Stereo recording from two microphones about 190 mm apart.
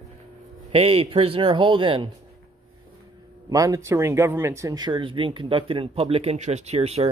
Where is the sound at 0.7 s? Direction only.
30° right (ahead or behind).